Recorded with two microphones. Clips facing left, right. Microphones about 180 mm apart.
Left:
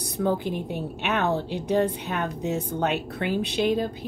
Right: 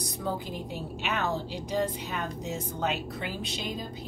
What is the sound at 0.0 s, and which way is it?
A woman's voice, 65° left (ahead or behind).